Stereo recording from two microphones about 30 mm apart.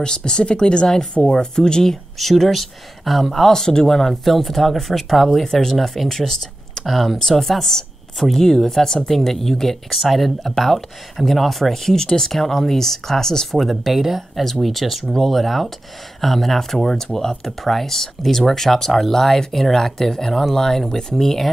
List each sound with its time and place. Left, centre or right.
0.0 s speech: left
2.1 s speech: centre
6.9 s speech: centre
7.2 s speech: centre
9.1 s speech: centre
13.5 s speech: centre
13.9 s speech: centre
14.4 s speech: centre